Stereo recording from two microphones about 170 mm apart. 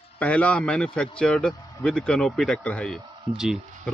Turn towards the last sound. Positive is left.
turn(degrees=-5)  # may be behind; listen again after turning